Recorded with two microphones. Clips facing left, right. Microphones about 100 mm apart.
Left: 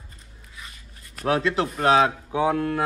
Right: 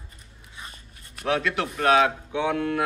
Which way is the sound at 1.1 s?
35° left (ahead or behind).